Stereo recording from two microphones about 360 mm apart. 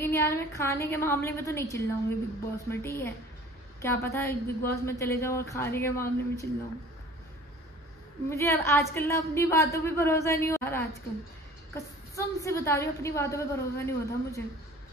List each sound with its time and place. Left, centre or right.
0.0 s a woman's voice: centre
8.3 s a woman's voice: centre